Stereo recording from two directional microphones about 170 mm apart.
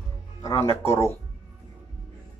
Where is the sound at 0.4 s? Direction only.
20° left (ahead or behind).